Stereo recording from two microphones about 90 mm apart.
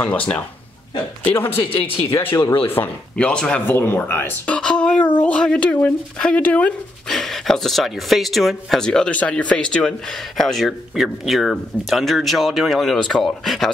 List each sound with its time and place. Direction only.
0.0 s speech: 15° left (ahead or behind)
3.6 s speech: 25° left (ahead or behind)
4.6 s speech: 10° left (ahead or behind)
7.1 s speech: 5° left (ahead or behind)